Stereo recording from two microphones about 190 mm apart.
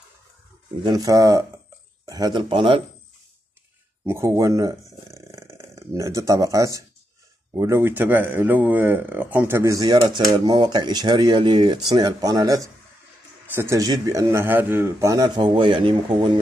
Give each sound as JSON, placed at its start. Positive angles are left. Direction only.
{"t": 0.8, "sound": "speech", "side_deg": -20}
{"t": 4.0, "sound": "speech", "side_deg": -15}